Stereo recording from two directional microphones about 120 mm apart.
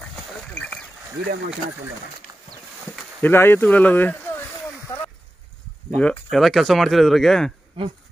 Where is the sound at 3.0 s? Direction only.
15° left (ahead or behind).